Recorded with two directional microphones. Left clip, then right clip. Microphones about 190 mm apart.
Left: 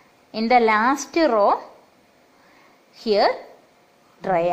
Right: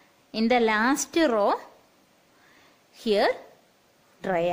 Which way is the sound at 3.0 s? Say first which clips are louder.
Left 4 dB; 35° right (ahead or behind).